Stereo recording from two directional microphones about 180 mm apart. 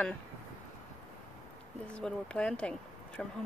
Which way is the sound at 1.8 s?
5° left (ahead or behind).